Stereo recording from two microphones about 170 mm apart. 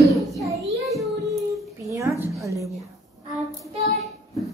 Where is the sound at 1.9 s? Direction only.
20° right (ahead or behind).